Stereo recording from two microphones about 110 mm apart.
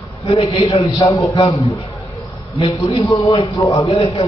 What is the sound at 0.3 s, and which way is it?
Speech, 70° left (ahead or behind).